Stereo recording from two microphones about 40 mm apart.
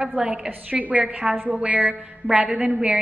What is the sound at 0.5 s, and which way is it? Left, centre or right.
A woman's voice, right.